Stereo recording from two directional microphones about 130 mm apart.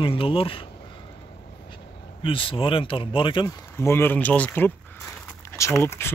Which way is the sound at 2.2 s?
45° left (ahead or behind).